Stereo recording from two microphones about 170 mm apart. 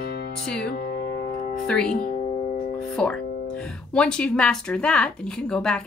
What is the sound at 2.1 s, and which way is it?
Music, 35° left (ahead or behind).